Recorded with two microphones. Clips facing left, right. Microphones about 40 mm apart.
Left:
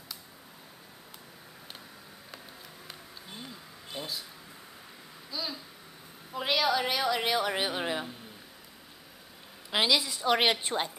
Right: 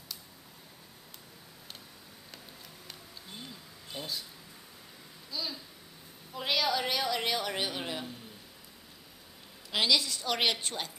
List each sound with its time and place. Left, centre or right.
3.9 s speech: centre
5.3 s a sound: centre
6.3 s a woman's voice: centre
9.7 s a woman's voice: centre